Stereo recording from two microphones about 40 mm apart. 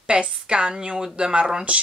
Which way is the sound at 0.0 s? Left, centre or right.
Right.